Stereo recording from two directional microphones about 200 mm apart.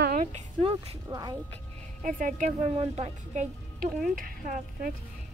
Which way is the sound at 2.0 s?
40° right (ahead or behind).